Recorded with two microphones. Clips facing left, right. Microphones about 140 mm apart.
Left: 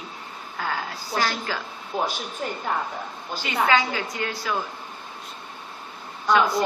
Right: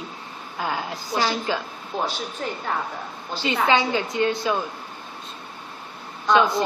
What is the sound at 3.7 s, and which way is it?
Speech, 20° right (ahead or behind).